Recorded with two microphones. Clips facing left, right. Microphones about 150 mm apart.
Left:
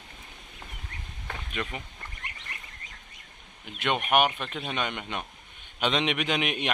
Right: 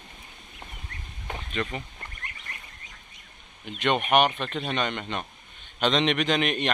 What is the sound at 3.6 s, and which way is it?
A man's voice, 5° left (ahead or behind).